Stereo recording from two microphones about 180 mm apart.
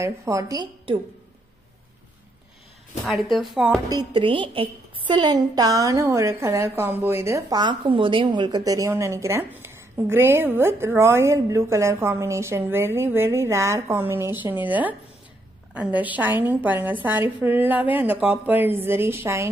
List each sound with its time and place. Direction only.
0.0 s a woman's voice: 15° right (ahead or behind)
3.0 s speech: centre (ahead or behind)
3.9 s a woman's voice: 25° right (ahead or behind)